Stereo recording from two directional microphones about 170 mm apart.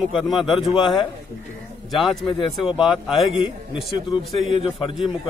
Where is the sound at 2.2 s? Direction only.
30° left (ahead or behind).